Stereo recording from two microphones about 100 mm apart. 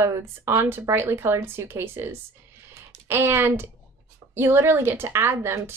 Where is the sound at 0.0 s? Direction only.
25° right (ahead or behind).